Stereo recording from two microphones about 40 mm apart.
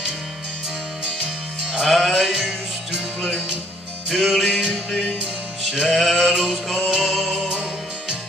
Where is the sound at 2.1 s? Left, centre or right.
Centre.